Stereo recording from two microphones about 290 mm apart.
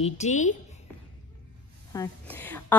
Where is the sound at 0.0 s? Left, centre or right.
Left.